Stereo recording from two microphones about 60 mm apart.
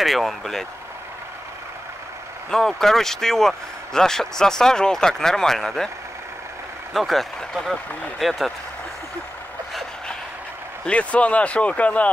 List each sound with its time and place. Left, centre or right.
0.0 s speech: centre
2.5 s speech: centre
6.9 s speech: centre
10.9 s speech: left